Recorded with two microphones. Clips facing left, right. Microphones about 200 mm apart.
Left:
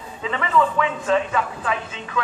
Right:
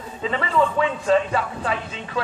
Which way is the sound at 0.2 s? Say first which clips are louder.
Even; 35° right (ahead or behind).